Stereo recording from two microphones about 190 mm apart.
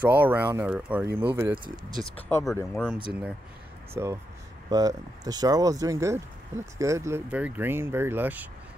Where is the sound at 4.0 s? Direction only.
10° right (ahead or behind).